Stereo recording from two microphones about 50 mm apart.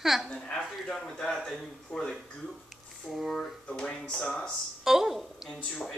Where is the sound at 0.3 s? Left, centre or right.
Centre.